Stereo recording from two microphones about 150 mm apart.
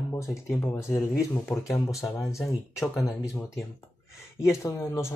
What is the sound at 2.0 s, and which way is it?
Speech, centre (ahead or behind).